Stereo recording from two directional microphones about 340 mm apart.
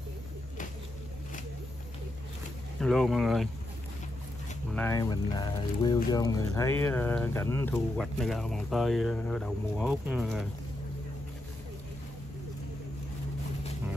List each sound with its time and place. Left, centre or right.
2.8 s speech: centre
4.7 s speech: centre